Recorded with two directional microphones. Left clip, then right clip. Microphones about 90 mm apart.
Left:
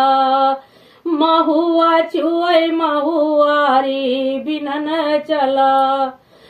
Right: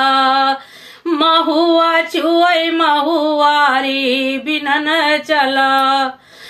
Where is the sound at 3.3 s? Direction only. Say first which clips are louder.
Right 1 dB; 20° right (ahead or behind).